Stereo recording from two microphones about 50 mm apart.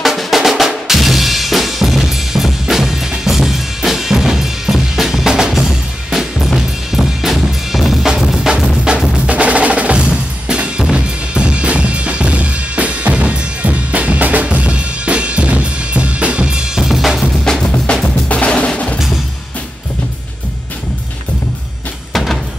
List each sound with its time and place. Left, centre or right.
0.0 s drum: centre
2.6 s drum kit: centre
8.5 s music: centre
9.2 s drum: right
16.8 s drum kit: centre
17.5 s music: centre
18.0 s music: left
22.1 s music: centre